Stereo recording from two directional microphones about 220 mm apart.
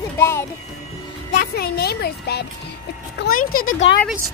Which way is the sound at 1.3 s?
45° left (ahead or behind).